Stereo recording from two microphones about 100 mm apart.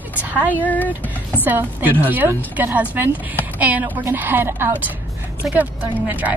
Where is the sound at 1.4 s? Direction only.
20° right (ahead or behind).